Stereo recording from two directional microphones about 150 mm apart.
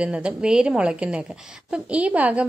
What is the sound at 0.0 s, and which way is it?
Speech, 5° right (ahead or behind).